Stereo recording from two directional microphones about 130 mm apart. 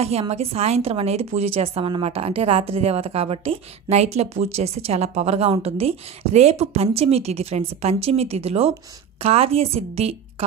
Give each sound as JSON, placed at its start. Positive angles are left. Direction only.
{"t": 0.0, "sound": "a woman's voice", "side_deg": -50}